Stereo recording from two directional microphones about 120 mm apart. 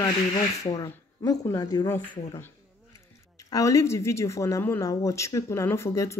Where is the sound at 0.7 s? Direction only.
30° left (ahead or behind).